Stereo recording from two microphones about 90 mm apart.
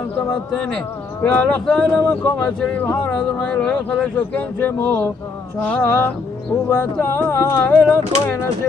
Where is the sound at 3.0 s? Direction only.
10° left (ahead or behind).